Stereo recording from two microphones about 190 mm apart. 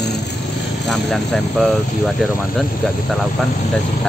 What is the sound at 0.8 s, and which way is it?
Speech, 5° left (ahead or behind).